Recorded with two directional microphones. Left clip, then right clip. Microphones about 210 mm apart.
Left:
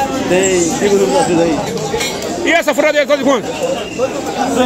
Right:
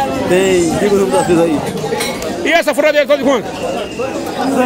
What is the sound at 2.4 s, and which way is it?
Speech, 15° right (ahead or behind).